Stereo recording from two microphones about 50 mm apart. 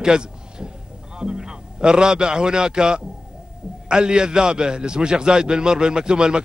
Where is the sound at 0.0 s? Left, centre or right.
Centre.